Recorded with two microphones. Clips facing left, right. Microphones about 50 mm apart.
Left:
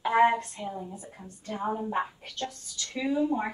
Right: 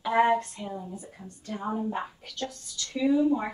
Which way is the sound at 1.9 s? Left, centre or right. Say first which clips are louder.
Left 3 dB; left.